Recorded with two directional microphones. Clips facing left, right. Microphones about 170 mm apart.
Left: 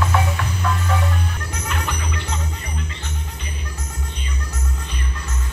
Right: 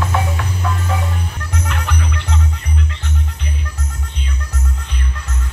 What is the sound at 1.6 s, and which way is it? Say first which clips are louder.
Music: right 1 dB; 70° right (ahead or behind).